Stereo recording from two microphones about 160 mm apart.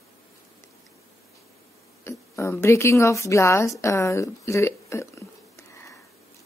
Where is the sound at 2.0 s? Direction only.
15° left (ahead or behind).